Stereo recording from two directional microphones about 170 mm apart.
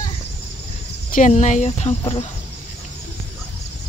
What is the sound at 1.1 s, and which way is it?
Speech, 45° left (ahead or behind).